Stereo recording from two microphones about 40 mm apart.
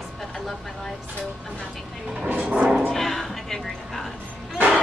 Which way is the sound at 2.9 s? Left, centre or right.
Centre.